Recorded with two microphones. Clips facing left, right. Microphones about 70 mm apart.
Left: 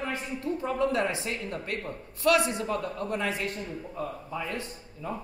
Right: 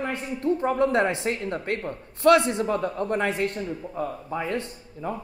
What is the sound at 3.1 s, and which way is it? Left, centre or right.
A man's voice, right.